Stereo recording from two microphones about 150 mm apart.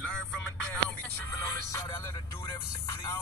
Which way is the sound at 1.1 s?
15° left (ahead or behind).